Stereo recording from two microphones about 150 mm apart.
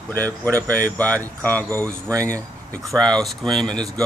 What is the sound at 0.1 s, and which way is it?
Speech, 10° left (ahead or behind).